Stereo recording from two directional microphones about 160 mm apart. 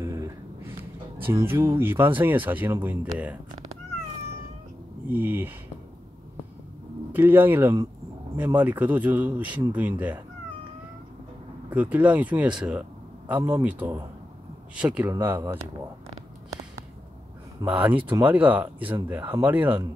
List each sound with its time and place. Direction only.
0.0 s a sound: 20° right (ahead or behind)
1.2 s speech: 15° right (ahead or behind)
5.0 s speech: 10° right (ahead or behind)
7.1 s speech: 10° right (ahead or behind)
11.7 s speech: 10° right (ahead or behind)
17.6 s speech: 10° right (ahead or behind)